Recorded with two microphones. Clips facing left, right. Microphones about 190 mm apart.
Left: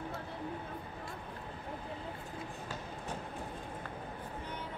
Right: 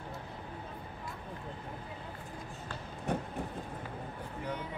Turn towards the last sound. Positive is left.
turn(degrees=-60)  # may be behind; listen again after turning